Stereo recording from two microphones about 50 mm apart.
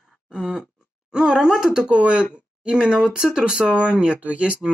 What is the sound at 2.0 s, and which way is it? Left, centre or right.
Speech, right.